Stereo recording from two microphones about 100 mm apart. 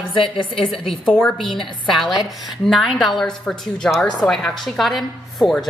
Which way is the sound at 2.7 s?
Centre (ahead or behind).